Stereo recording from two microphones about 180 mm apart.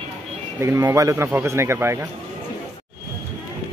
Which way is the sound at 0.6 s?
15° right (ahead or behind).